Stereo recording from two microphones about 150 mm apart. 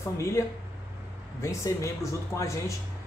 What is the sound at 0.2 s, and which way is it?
Speech, 20° left (ahead or behind).